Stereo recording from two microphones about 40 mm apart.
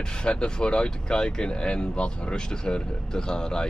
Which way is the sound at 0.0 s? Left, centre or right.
Left.